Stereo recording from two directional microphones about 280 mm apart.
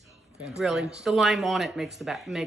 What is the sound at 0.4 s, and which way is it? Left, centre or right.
Speech, centre.